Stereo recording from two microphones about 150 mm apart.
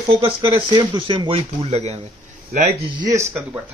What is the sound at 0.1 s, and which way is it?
Speech, 35° right (ahead or behind).